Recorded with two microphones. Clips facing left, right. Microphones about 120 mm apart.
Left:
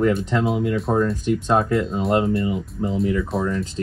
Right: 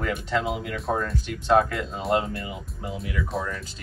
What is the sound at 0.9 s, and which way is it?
Speech, 15° left (ahead or behind).